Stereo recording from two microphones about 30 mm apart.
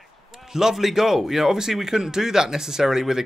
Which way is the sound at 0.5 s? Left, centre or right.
Centre.